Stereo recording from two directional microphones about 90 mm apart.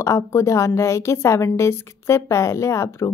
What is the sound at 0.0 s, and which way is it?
A woman's voice, 35° left (ahead or behind).